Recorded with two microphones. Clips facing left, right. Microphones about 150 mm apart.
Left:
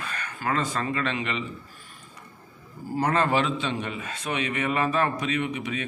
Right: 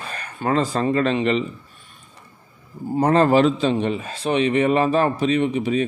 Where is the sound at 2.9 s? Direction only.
30° right (ahead or behind).